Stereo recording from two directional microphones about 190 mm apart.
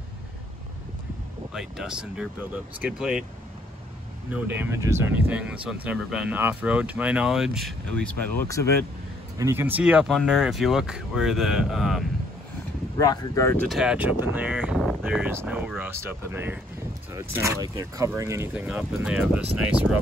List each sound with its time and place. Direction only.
1.5 s speech: 5° right (ahead or behind)
4.3 s speech: 10° right (ahead or behind); by 8.6 s 15° left (ahead or behind)
9.4 s speech: 15° right (ahead or behind)
13.0 s speech: 15° left (ahead or behind)
13.7 s speech: 5° right (ahead or behind)